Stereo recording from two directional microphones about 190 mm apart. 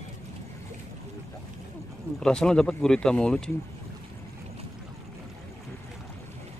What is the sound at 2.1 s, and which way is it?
Speech, 5° left (ahead or behind).